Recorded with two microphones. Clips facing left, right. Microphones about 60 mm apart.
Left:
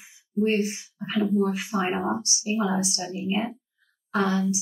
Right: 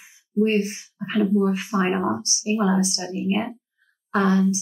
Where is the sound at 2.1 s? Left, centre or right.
Right.